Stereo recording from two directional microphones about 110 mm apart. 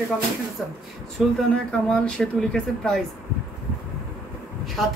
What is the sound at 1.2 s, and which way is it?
Speech, centre (ahead or behind).